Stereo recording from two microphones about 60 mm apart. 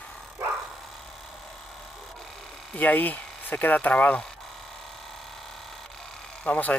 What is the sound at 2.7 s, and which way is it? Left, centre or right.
Speech, left.